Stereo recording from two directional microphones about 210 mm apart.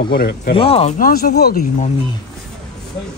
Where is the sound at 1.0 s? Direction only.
40° left (ahead or behind).